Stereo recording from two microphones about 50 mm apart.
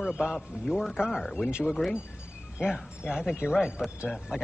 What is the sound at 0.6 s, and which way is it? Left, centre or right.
Speech, centre.